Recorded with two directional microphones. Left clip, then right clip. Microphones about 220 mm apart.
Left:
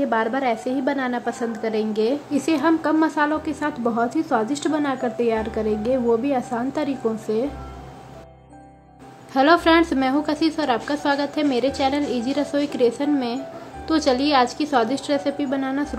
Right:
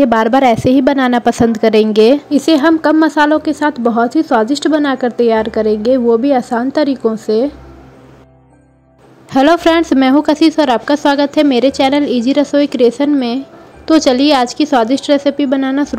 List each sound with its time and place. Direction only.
0.0 s a woman's voice: 40° right (ahead or behind)
9.3 s a woman's voice: 35° right (ahead or behind)